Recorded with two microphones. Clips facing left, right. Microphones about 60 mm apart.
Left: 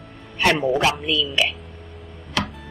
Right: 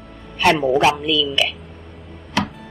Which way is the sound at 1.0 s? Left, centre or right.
Left.